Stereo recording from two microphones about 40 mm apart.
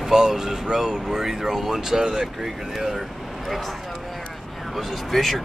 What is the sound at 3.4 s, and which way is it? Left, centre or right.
Speech, centre.